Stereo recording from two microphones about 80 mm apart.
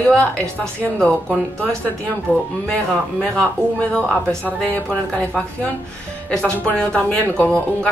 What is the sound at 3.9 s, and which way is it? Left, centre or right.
Speech, centre.